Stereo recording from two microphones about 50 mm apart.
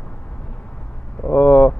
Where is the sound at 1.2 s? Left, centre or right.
Left.